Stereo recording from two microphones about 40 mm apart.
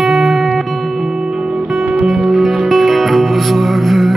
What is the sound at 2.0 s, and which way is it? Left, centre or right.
Music, centre.